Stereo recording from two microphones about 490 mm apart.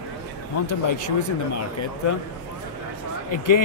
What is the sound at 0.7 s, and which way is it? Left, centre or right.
Speech, left.